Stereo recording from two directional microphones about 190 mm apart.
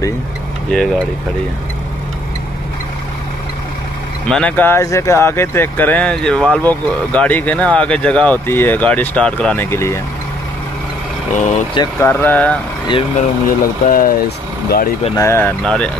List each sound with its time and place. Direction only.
0.7 s speech: 5° left (ahead or behind)
4.3 s speech: 5° left (ahead or behind)
11.3 s speech: 40° left (ahead or behind)
11.7 s speech: 15° left (ahead or behind)
13.5 s speech: 45° left (ahead or behind)
15.1 s speech: 15° left (ahead or behind)